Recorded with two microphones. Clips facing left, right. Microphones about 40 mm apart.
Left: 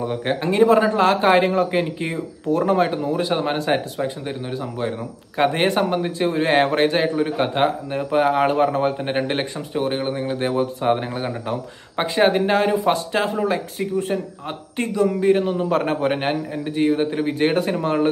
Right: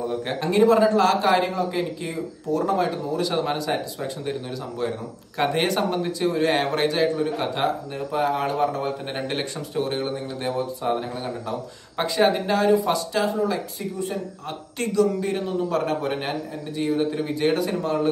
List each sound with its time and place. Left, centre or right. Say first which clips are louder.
0.2 s a man's voice: left 2 dB; left
3.2 s a man's voice: left 3 dB; left
4.0 s a man's voice: left 3 dB; left
12.0 s a man's voice: left 3 dB; left
14.8 s a man's voice: left 2 dB; left